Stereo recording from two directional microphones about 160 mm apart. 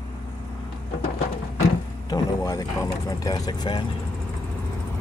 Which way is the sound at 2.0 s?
25° left (ahead or behind).